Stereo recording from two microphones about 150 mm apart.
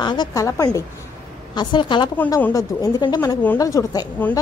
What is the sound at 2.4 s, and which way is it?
A woman's voice, 20° left (ahead or behind).